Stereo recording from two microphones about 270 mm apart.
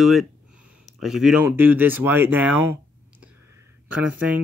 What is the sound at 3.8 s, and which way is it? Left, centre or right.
Speech, centre.